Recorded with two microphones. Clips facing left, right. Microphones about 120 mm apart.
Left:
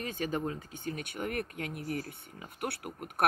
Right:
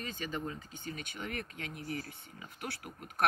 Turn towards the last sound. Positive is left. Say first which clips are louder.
# left 5 dB
turn(degrees=60)  # may be behind; listen again after turning